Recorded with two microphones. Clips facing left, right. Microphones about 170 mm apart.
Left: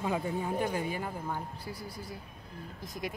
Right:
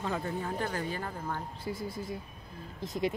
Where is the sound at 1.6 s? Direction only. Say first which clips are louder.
Right 5 dB; 25° right (ahead or behind).